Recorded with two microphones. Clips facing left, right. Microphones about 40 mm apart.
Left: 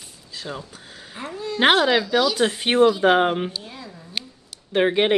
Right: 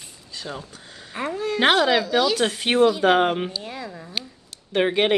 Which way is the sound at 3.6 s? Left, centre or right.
Right.